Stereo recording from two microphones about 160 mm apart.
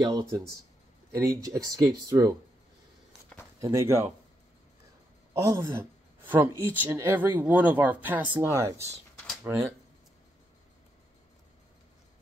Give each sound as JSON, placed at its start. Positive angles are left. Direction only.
{"t": 0.0, "sound": "speech", "side_deg": -20}
{"t": 3.6, "sound": "speech", "side_deg": -20}
{"t": 5.3, "sound": "speech", "side_deg": -20}